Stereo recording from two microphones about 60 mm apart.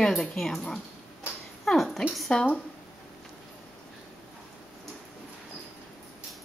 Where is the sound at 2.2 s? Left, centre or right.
Centre.